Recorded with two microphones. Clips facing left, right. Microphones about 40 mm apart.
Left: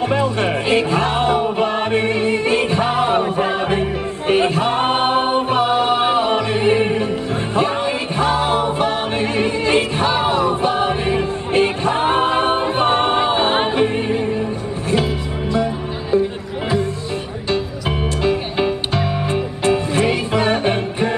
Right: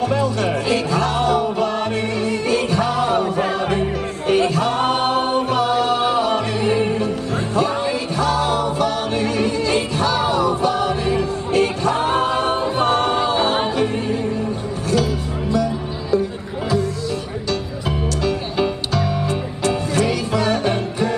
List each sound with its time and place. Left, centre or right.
0.0 s music: left
15.5 s music: left
17.5 s music: left